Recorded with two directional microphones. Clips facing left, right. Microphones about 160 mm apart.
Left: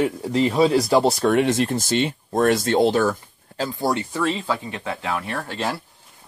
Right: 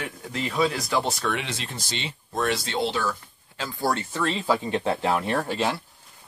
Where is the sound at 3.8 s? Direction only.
15° left (ahead or behind).